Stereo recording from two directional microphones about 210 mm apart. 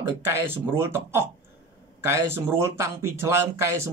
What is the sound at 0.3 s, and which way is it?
Speech, 10° right (ahead or behind).